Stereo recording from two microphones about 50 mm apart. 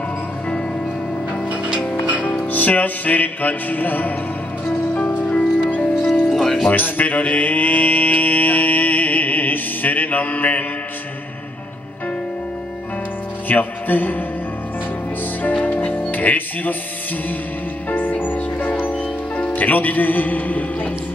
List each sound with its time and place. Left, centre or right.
2.3 s music: left
6.2 s music: centre
6.7 s mantra: left
13.5 s music: left
15.6 s music: left
17.8 s music: left